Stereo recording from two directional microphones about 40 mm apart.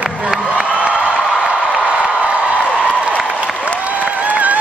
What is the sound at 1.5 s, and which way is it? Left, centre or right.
Music, right.